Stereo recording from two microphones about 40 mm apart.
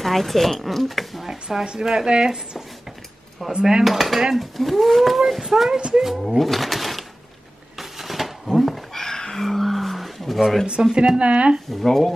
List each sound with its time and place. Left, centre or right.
0.0 s speech: centre
1.6 s speech: centre
3.8 s speech: centre
5.4 s speech: centre
7.8 s a sound: centre
8.9 s a sound: centre
11.0 s speech: right
11.7 s speech: centre